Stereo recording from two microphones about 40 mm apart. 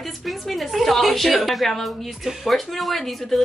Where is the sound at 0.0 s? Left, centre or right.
Centre.